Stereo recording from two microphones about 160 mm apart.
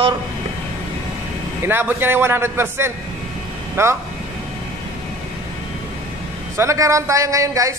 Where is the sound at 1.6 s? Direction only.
15° right (ahead or behind).